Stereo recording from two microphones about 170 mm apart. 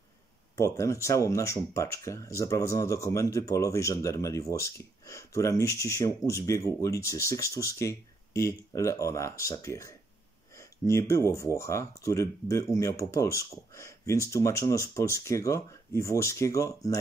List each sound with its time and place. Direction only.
0.6 s speech: 15° left (ahead or behind)